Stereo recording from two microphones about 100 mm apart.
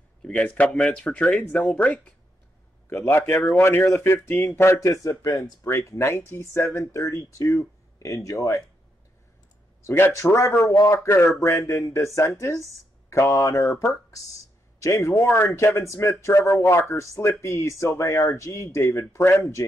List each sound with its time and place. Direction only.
0.2 s speech: 10° left (ahead or behind)
2.9 s a man's voice: 25° left (ahead or behind)
9.8 s a man's voice: 25° left (ahead or behind)